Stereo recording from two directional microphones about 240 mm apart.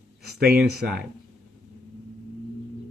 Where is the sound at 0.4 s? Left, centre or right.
Right.